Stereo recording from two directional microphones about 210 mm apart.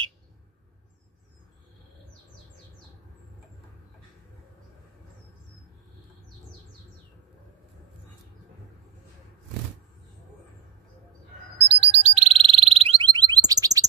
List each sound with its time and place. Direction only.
11.6 s alarm: 30° right (ahead or behind)